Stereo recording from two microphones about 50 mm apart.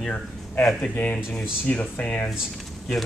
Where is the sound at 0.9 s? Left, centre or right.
Left.